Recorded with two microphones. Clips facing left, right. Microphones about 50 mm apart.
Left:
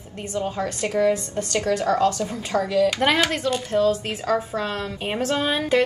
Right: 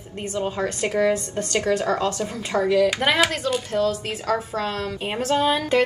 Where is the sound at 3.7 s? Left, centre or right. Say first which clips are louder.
Left 2 dB; left.